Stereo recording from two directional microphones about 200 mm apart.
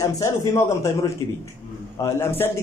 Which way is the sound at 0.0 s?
15° left (ahead or behind).